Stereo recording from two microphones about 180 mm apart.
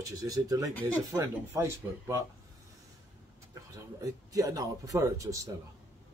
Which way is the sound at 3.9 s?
20° right (ahead or behind).